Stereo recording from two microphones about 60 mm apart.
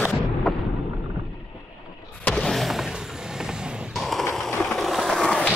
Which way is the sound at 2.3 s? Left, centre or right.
Centre.